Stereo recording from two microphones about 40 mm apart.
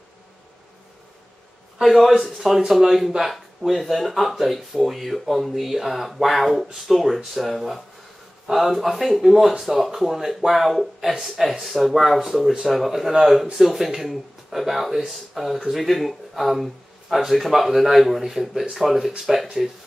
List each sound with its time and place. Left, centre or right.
1.8 s speech: centre